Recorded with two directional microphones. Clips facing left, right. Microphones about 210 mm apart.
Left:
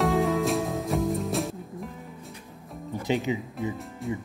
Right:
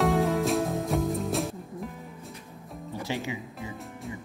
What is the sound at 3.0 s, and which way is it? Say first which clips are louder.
Speech: left 7 dB; 20° left (ahead or behind).